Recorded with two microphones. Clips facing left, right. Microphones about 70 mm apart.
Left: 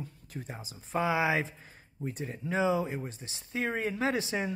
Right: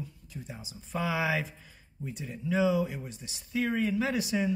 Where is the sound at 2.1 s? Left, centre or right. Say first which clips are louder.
Right 1 dB; left.